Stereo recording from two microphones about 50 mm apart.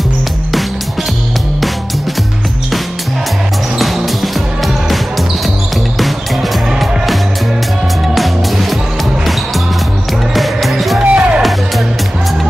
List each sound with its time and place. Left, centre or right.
3.7 s music: centre
8.1 s music: centre
10.3 s music: centre
11.1 s music: right